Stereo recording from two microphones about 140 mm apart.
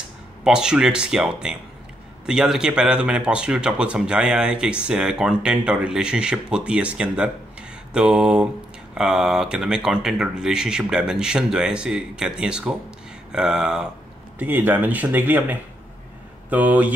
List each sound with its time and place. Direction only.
0.4 s speech: 5° right (ahead or behind)